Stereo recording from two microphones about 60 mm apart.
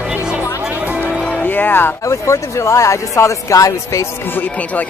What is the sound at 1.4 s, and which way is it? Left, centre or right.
Speech, left.